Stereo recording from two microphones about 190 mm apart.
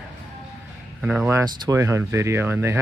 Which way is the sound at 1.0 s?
5° right (ahead or behind).